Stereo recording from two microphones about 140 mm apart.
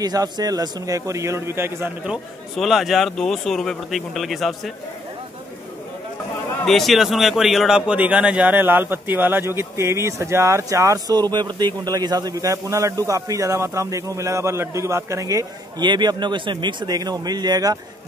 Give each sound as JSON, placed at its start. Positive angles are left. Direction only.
{"t": 0.0, "sound": "a man's voice", "side_deg": -25}
{"t": 2.5, "sound": "speech", "side_deg": 0}
{"t": 6.6, "sound": "a man's voice", "side_deg": 0}